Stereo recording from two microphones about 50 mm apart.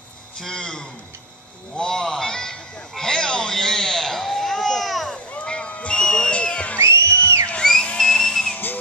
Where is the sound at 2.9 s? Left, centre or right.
Centre.